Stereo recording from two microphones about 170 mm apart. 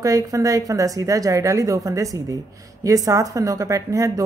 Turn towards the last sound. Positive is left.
turn(degrees=-20)  # may be behind; listen again after turning